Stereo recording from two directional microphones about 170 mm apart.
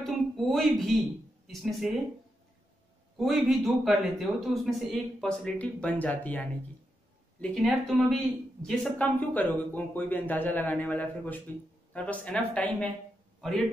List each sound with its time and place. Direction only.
0.0 s a sound: centre (ahead or behind)
1.5 s a man's voice: centre (ahead or behind)
3.2 s a man's voice: centre (ahead or behind)